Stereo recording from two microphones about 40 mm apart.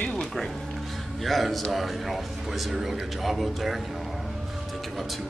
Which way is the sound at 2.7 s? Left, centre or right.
Centre.